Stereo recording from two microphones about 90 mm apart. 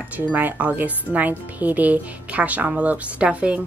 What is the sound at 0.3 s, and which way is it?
Speech, 15° right (ahead or behind).